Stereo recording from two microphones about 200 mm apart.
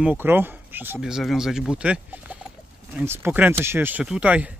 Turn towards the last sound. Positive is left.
turn(degrees=-5)  # may be behind; listen again after turning